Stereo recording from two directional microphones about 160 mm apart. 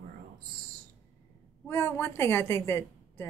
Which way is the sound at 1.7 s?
15° left (ahead or behind).